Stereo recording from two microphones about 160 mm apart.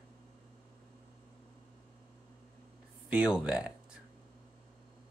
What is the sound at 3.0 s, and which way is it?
Speech, 10° right (ahead or behind).